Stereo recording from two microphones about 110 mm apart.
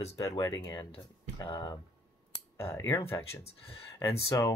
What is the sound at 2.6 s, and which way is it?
Speech, 25° left (ahead or behind).